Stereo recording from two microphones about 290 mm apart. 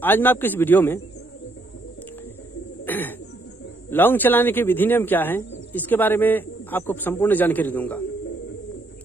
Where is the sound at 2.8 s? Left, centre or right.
Centre.